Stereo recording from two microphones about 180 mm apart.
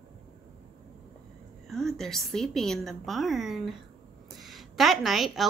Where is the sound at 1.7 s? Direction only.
Centre (ahead or behind).